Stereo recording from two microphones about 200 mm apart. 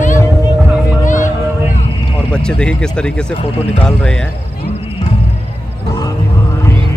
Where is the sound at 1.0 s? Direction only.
40° left (ahead or behind).